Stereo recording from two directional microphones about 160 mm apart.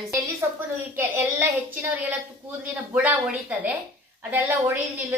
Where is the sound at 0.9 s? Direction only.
10° right (ahead or behind).